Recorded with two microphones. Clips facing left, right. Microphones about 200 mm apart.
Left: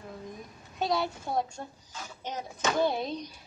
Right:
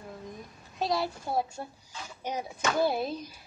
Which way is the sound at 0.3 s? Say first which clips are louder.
Even; centre (ahead or behind).